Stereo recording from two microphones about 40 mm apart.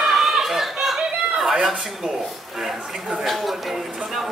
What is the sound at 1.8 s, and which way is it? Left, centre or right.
A man's voice, centre.